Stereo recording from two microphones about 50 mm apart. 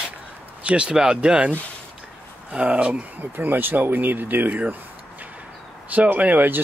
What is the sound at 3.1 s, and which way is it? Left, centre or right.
Speech, right.